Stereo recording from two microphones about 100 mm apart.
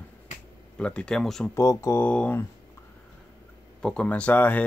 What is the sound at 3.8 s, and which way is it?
Speech, 10° left (ahead or behind).